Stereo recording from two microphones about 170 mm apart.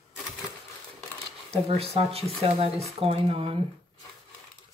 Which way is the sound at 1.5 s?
35° right (ahead or behind).